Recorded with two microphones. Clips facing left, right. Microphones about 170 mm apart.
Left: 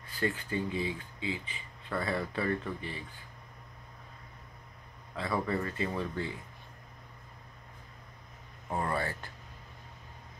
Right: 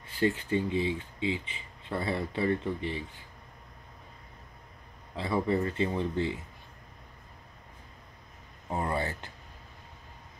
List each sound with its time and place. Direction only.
0.1 s speech: 25° right (ahead or behind)
5.1 s speech: 25° right (ahead or behind)
8.6 s speech: 20° right (ahead or behind)